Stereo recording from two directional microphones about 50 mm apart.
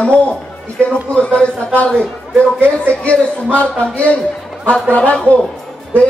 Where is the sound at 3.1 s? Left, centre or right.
Left.